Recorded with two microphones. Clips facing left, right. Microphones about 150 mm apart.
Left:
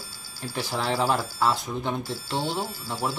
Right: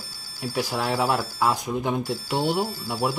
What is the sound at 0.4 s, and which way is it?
Speech, 10° right (ahead or behind).